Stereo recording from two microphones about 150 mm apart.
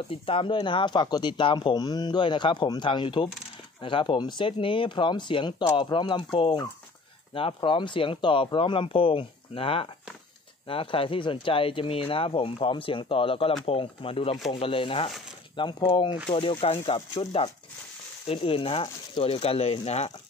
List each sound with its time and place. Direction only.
0.1 s speech: 35° left (ahead or behind)